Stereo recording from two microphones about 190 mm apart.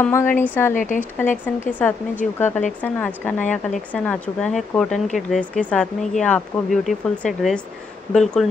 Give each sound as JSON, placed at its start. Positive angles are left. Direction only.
{"t": 0.0, "sound": "speech", "side_deg": 10}
{"t": 0.7, "sound": "speech", "side_deg": 40}
{"t": 1.7, "sound": "speech", "side_deg": 10}